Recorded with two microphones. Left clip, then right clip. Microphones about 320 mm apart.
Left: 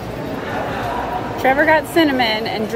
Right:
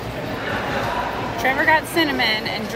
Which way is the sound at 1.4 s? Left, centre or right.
Left.